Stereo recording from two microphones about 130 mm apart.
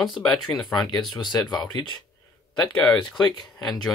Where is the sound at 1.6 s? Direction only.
30° left (ahead or behind).